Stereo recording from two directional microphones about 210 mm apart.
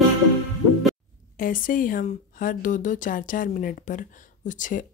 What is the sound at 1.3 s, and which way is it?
Speech, 40° left (ahead or behind).